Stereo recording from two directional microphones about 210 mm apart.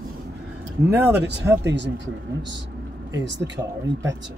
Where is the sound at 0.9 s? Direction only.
10° right (ahead or behind).